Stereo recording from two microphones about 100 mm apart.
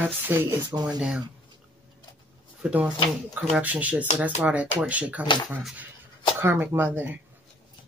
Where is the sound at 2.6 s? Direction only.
15° right (ahead or behind).